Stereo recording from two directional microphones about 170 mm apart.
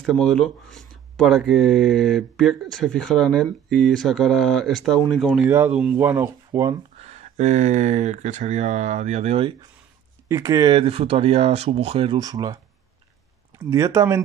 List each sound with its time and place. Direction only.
0.0 s speech: 5° left (ahead or behind)
5.5 s speech: 10° right (ahead or behind)
7.0 s speech: 40° right (ahead or behind)
10.2 s speech: 20° right (ahead or behind)
13.7 s speech: 15° right (ahead or behind)